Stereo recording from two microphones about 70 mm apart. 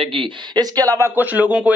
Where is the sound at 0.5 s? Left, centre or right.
Right.